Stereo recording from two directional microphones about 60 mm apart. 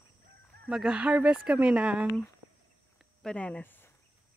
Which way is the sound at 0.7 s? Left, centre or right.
Centre.